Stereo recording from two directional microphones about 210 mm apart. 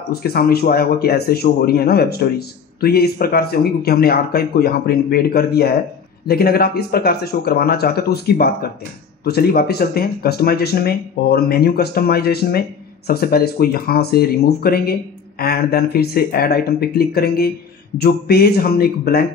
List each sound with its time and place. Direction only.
0.1 s speech: 45° left (ahead or behind)